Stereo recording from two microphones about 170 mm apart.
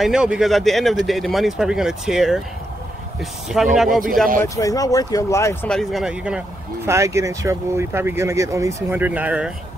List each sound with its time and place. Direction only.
0.0 s speech: 5° right (ahead or behind)
4.4 s speech: 20° left (ahead or behind)
5.7 s speech: centre (ahead or behind)
6.9 s speech: 15° right (ahead or behind)